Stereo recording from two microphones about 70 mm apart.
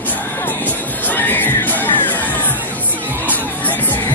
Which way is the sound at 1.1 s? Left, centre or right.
Left.